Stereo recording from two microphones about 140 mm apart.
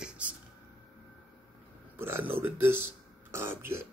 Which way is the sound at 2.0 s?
15° right (ahead or behind).